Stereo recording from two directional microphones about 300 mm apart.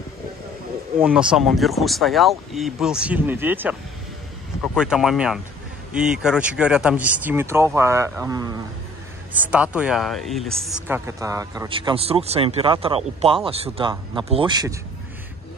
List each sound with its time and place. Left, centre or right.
0.9 s speech: centre
4.7 s speech: centre